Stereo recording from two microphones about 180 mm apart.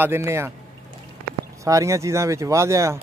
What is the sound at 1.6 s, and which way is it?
Speech, 15° right (ahead or behind).